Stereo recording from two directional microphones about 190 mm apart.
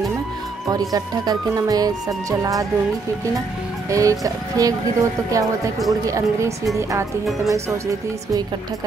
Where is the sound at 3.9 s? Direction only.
15° right (ahead or behind).